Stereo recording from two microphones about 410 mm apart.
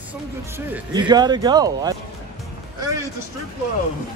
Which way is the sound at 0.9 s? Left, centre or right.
Centre.